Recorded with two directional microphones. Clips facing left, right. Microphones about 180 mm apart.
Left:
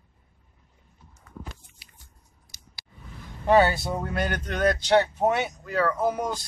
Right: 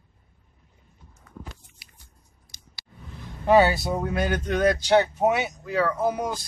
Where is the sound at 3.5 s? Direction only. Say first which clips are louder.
Right 2 dB; 10° right (ahead or behind).